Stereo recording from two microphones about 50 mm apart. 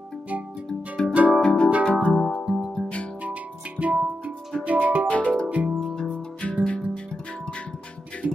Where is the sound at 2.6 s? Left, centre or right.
Centre.